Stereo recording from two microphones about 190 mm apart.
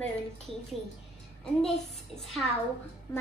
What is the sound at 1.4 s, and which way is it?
A child's voice, 5° left (ahead or behind).